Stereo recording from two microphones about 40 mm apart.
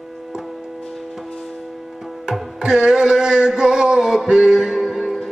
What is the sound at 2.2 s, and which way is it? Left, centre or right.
Music, centre.